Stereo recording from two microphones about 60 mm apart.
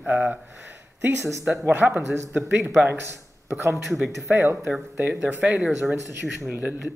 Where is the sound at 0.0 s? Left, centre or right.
Right.